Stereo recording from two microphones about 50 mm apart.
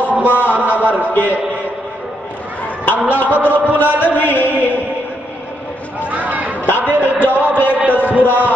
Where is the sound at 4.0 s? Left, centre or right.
Left.